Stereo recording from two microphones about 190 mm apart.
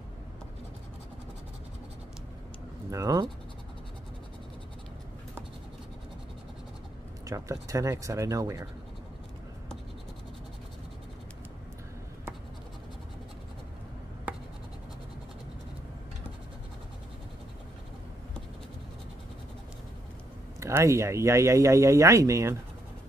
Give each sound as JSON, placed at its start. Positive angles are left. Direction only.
{"t": 2.9, "sound": "speech", "side_deg": -20}
{"t": 7.2, "sound": "speech", "side_deg": -15}
{"t": 20.6, "sound": "speech", "side_deg": -15}